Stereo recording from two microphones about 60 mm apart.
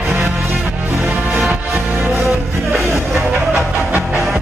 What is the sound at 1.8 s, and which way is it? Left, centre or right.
Music, centre.